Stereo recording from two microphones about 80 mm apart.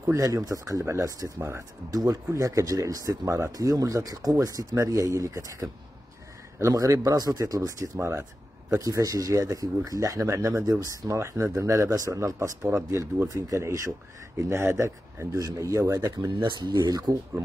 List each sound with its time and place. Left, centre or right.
0.0 s speech: right
3.5 s speech: right
8.0 s speech: right
10.7 s speech: right
16.4 s speech: right